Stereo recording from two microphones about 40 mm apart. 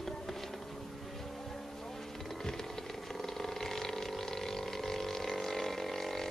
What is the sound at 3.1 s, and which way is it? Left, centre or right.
Vehicle, centre.